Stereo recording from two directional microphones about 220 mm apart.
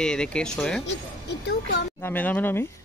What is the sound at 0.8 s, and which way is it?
Speech, 50° left (ahead or behind).